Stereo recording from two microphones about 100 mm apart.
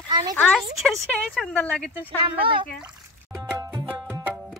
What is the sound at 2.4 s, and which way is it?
Speech, 60° right (ahead or behind).